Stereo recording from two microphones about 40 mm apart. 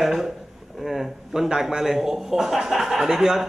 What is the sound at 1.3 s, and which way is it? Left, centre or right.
A man's voice, centre.